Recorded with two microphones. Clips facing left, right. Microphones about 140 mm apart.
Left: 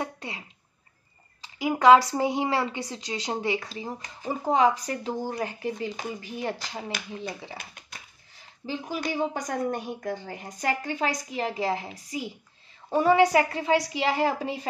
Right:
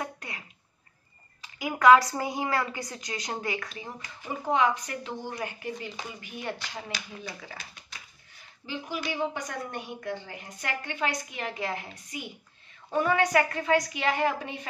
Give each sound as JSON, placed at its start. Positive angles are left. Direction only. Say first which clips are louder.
{"t": 0.0, "sound": "a sound", "louder": "left 3 dB", "side_deg": 25}
{"t": 1.4, "sound": "a woman's voice", "louder": "left 2 dB", "side_deg": 30}
{"t": 7.2, "sound": "a woman's voice", "louder": "left 5 dB", "side_deg": 25}
{"t": 7.5, "sound": "speech", "louder": "left 3 dB", "side_deg": 50}
{"t": 8.6, "sound": "speech", "louder": "left 3 dB", "side_deg": 40}